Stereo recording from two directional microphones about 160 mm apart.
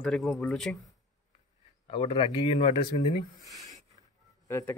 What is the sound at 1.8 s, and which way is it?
Speech, 35° left (ahead or behind).